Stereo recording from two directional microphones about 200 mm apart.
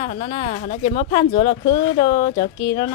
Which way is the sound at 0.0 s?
25° left (ahead or behind).